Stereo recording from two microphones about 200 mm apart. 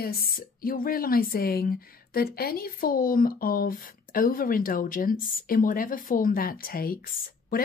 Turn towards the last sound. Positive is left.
turn(degrees=45)  # may be behind; listen again after turning